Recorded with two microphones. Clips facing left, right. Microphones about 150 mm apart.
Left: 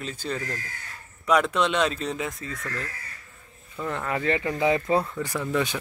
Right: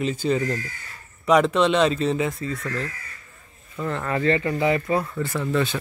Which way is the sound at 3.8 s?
5° left (ahead or behind).